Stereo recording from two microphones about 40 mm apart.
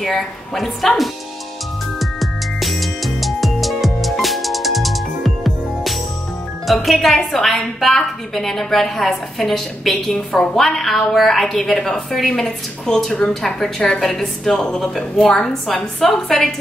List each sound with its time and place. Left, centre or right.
0.0 s speech: centre
2.0 s music: centre
6.7 s a woman's voice: centre; by 13.4 s left
13.6 s a woman's voice: centre